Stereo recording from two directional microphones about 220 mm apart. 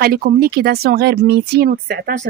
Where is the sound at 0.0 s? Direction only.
40° right (ahead or behind).